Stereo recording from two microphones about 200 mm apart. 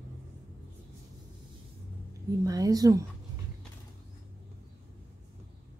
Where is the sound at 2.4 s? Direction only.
20° right (ahead or behind).